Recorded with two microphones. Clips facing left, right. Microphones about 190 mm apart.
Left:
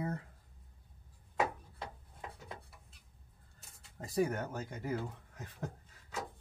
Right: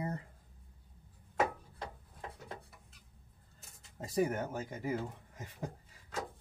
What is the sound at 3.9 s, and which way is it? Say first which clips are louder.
Speech: right 1 dB; 20° right (ahead or behind).